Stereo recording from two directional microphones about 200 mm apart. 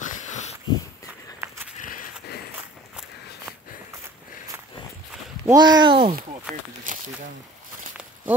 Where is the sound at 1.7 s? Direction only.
40° left (ahead or behind).